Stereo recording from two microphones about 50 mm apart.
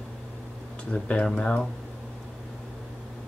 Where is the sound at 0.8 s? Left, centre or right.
Left.